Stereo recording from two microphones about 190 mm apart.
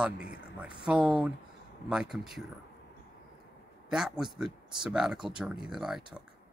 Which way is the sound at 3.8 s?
5° right (ahead or behind).